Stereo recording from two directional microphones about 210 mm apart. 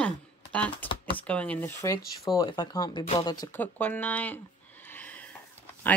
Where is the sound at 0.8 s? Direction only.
25° left (ahead or behind).